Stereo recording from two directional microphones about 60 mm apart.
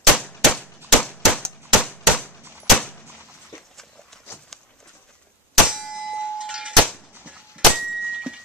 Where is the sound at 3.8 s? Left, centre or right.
Centre.